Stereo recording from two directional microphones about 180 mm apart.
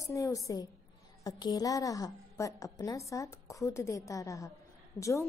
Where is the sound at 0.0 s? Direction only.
15° left (ahead or behind).